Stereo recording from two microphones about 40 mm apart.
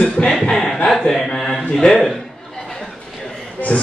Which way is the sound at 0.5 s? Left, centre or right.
Centre.